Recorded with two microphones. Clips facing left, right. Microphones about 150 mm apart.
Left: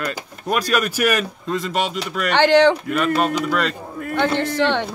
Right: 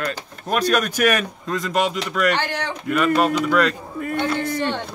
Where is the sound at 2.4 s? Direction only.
90° left.